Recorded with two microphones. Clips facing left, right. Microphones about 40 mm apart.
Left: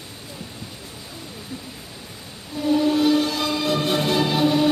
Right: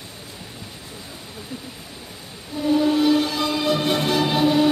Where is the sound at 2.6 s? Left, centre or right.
Centre.